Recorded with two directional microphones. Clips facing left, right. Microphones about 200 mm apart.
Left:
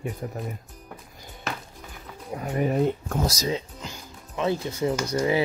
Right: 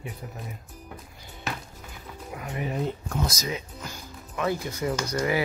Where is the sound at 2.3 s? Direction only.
45° left (ahead or behind).